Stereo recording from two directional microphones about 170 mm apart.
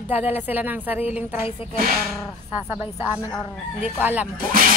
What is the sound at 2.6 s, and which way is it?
Speech, 15° right (ahead or behind).